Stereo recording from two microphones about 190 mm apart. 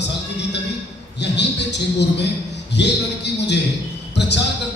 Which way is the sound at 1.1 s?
65° left (ahead or behind).